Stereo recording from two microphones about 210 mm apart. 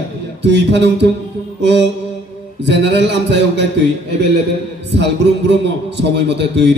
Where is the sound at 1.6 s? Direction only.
55° right (ahead or behind).